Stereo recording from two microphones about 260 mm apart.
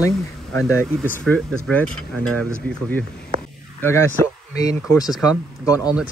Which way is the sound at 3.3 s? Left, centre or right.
Right.